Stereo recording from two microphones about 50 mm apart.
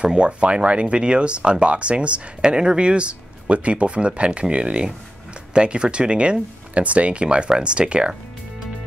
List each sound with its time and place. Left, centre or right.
0.0 s speech: right